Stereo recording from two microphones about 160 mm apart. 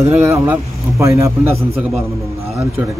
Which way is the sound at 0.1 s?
10° right (ahead or behind).